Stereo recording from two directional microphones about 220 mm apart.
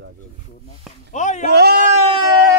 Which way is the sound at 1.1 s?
35° left (ahead or behind).